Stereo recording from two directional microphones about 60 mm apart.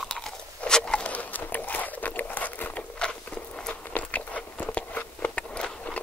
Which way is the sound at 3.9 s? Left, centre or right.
Left.